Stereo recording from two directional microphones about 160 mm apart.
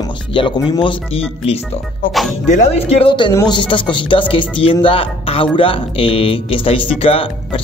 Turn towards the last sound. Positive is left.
turn(degrees=35)  # may be behind; listen again after turning